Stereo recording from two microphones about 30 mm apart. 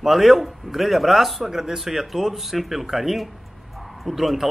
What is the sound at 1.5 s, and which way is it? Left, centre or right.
Speech, centre.